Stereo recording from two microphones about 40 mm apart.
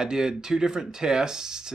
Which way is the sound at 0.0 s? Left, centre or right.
Centre.